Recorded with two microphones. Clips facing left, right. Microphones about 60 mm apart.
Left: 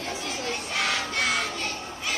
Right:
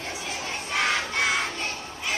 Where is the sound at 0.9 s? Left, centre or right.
Right.